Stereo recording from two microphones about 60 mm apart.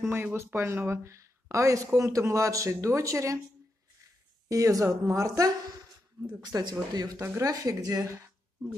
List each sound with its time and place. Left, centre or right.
0.0 s speech: right
0.6 s a woman's voice: right
4.5 s a woman's voice: right
6.5 s speech: right